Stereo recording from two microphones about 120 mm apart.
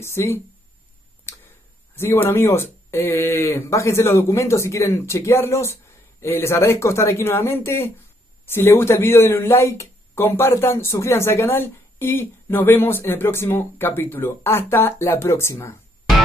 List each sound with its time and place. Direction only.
0.0 s speech: 20° left (ahead or behind)
1.3 s a sound: 20° left (ahead or behind)
2.0 s speech: 20° left (ahead or behind)